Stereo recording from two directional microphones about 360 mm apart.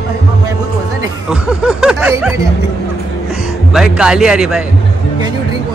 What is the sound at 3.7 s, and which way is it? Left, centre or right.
Music, centre.